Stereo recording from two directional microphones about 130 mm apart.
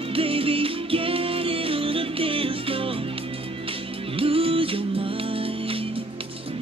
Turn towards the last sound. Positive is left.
turn(degrees=-45)  # may be behind; listen again after turning